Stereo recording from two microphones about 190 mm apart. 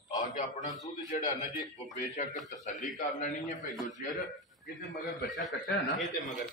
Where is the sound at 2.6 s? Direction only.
40° left (ahead or behind).